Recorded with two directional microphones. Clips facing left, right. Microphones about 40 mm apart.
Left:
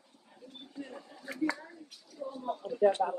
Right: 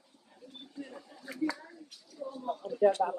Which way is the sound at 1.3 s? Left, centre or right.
Left.